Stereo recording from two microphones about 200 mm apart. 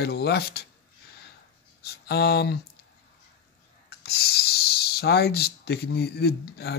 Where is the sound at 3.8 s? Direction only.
50° left (ahead or behind).